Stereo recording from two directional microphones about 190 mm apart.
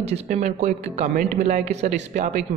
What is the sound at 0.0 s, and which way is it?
Speech, 35° right (ahead or behind).